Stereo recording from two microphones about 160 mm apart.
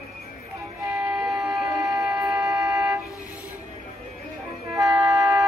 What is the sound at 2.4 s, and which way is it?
Vehicle, 20° right (ahead or behind).